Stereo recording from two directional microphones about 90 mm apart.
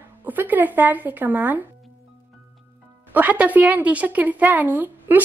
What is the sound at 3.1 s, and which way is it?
A woman's voice, 20° right (ahead or behind).